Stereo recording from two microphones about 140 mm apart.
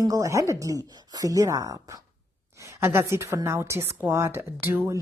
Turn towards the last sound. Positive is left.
turn(degrees=-20)  # may be behind; listen again after turning